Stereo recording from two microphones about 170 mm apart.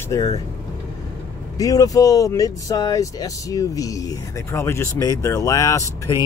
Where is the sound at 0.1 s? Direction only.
20° left (ahead or behind).